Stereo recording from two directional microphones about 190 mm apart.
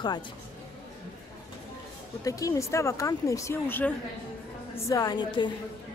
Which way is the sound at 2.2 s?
15° left (ahead or behind).